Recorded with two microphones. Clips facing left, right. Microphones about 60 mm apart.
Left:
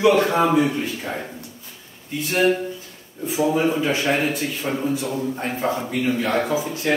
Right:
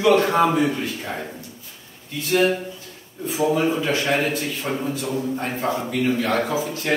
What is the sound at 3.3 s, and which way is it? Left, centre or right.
Speech, centre.